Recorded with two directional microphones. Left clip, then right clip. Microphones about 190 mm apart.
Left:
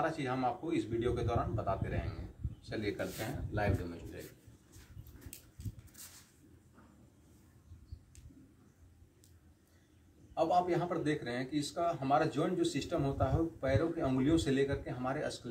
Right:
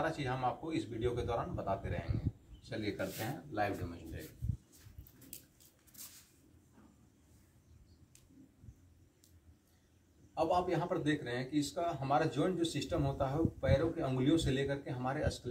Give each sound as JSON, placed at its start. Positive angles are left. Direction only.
{"t": 0.0, "sound": "a man's voice", "side_deg": 5}
{"t": 10.3, "sound": "a man's voice", "side_deg": 5}